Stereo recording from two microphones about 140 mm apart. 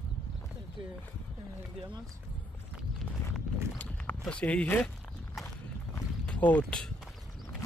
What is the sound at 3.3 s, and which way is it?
Walk, 10° left (ahead or behind).